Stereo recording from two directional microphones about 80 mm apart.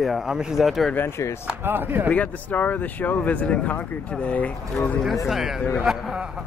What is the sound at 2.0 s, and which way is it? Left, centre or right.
Speech, centre.